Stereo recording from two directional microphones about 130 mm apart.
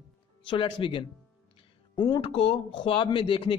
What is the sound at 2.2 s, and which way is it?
Speech, 45° left (ahead or behind).